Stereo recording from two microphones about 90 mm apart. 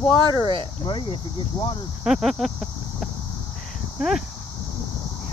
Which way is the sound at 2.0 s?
5° right (ahead or behind).